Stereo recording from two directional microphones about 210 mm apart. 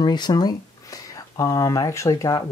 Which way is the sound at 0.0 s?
20° left (ahead or behind).